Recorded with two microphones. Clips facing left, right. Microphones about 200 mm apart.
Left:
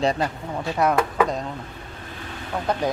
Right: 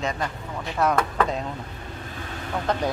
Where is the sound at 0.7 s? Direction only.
10° left (ahead or behind).